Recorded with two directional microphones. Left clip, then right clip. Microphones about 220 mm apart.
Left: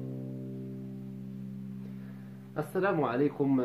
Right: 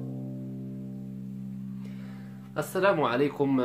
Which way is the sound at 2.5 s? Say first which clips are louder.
Right 5 dB; 15° right (ahead or behind).